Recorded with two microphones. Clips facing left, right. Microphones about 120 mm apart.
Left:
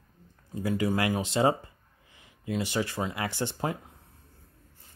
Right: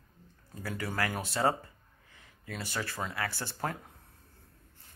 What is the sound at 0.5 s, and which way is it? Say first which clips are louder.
Speech: left 8 dB; 15° left (ahead or behind).